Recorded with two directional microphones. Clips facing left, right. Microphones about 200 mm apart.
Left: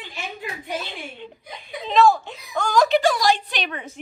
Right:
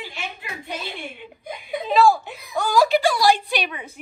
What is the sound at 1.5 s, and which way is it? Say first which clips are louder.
Speech: right 7 dB; 50° right (ahead or behind).